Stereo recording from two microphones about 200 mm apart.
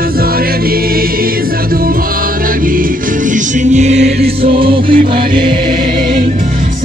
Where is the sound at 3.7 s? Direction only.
35° right (ahead or behind).